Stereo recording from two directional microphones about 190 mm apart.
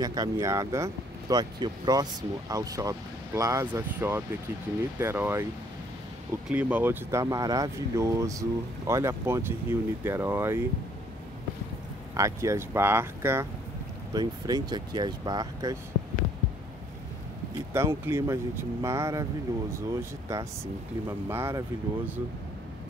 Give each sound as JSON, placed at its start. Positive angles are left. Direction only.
{"t": 0.0, "sound": "speech", "side_deg": -20}
{"t": 6.5, "sound": "speech", "side_deg": -10}
{"t": 12.1, "sound": "speech", "side_deg": -15}
{"t": 17.7, "sound": "speech", "side_deg": -15}